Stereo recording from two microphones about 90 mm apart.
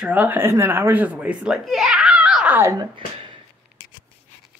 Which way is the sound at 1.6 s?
5° right (ahead or behind).